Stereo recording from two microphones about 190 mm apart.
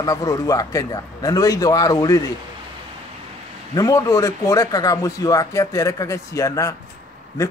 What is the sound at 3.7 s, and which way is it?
Speech, 20° left (ahead or behind).